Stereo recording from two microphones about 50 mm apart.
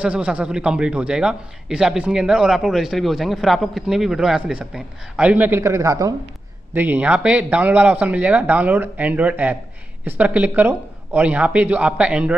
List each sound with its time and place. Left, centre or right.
0.0 s a man's voice: right; by 3.8 s centre
3.8 s a man's voice: centre; by 5.5 s right
5.6 s speech: right
6.7 s speech: right
7.1 s a man's voice: right
10.7 s speech: right
11.2 s a man's voice: right